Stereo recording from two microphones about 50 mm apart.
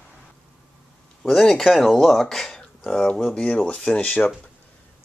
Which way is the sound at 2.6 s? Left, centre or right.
Left.